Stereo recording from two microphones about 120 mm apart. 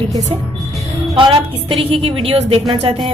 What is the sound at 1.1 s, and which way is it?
A woman's voice, 45° right (ahead or behind).